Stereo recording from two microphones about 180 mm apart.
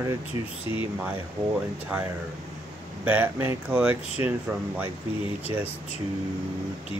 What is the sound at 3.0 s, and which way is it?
Speech, 10° right (ahead or behind).